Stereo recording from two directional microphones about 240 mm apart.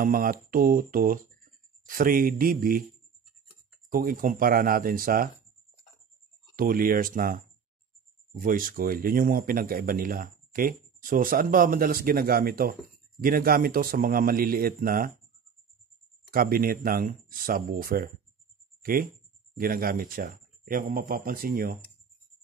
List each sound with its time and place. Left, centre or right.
0.0 s speech: right
3.9 s speech: right
6.5 s speech: right
16.3 s speech: right